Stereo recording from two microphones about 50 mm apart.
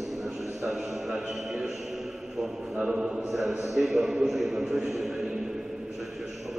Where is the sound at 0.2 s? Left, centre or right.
Centre.